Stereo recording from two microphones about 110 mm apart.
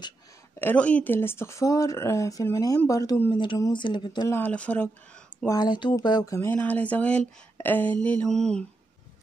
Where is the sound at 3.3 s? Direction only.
50° left (ahead or behind).